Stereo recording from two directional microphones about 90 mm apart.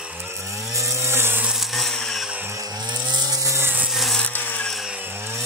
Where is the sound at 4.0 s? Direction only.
Centre (ahead or behind).